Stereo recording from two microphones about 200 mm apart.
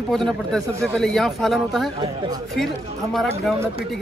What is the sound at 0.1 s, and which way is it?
Speech, centre (ahead or behind).